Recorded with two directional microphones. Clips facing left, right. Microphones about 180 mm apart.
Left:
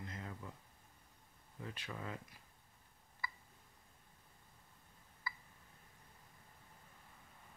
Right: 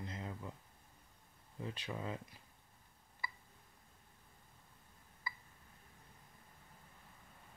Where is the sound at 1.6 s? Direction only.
20° right (ahead or behind).